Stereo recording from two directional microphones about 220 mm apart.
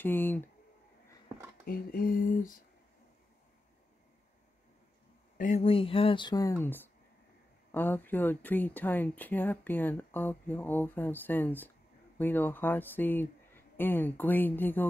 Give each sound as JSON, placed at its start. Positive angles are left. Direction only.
{"t": 0.0, "sound": "speech", "side_deg": 10}
{"t": 1.7, "sound": "a sound", "side_deg": 40}
{"t": 5.4, "sound": "speech", "side_deg": 30}